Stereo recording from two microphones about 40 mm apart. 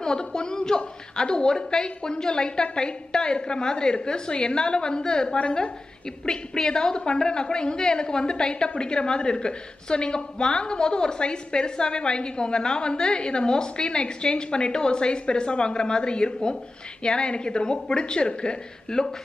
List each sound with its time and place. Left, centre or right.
0.0 s a woman's voice: centre